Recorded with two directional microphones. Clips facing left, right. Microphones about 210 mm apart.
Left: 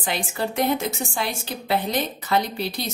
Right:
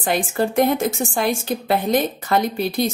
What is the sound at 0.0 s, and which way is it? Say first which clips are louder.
Speech: right 6 dB; 50° right (ahead or behind).